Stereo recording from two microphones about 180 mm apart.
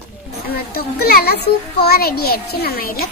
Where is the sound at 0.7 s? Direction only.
60° left (ahead or behind).